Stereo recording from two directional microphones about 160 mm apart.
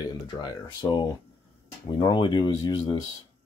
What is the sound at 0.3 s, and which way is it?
Speech, 25° left (ahead or behind).